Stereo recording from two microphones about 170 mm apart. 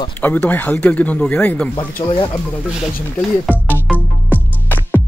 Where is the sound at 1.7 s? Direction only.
30° left (ahead or behind).